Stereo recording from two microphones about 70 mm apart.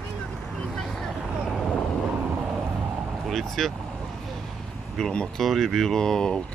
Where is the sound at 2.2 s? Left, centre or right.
Right.